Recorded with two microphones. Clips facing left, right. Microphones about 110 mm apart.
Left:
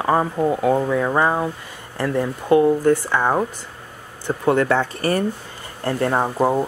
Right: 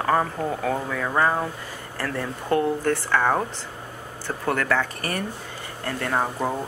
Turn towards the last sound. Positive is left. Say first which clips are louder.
# left 6 dB
turn(degrees=30)  # may be behind; listen again after turning